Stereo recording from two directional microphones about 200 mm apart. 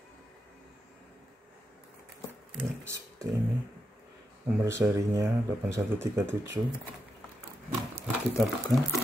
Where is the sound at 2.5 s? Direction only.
15° right (ahead or behind).